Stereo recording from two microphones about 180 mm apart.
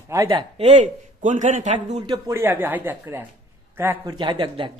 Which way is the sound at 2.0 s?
25° right (ahead or behind).